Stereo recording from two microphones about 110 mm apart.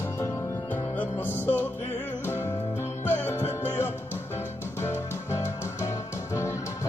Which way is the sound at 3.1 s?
20° left (ahead or behind).